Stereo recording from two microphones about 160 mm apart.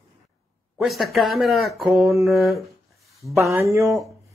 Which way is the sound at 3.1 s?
Centre (ahead or behind).